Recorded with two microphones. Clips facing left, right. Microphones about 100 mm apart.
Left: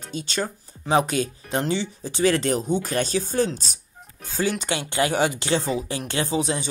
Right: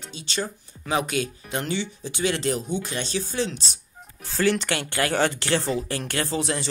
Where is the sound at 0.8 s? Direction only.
35° left (ahead or behind).